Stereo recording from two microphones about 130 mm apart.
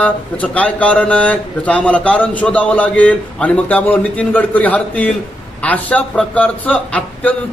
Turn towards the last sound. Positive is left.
turn(degrees=10)  # may be behind; listen again after turning